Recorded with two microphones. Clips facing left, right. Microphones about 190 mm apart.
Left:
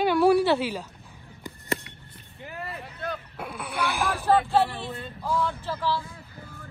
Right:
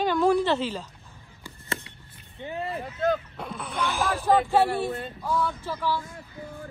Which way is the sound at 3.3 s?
10° left (ahead or behind).